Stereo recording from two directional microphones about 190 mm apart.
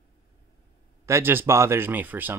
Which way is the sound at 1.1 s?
10° right (ahead or behind).